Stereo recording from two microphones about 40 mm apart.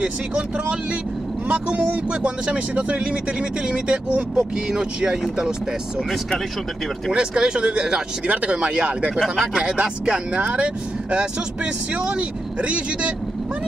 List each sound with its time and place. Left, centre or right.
0.0 s speech: right
7.1 s speech: right
9.2 s speech: centre
9.5 s speech: right